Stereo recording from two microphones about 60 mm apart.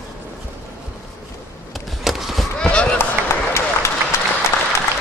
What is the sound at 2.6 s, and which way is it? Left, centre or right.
Chop, centre.